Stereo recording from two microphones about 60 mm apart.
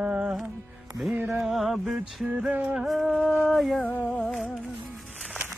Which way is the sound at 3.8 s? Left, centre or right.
Left.